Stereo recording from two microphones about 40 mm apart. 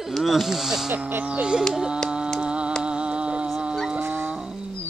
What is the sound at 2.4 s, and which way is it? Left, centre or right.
Music, right.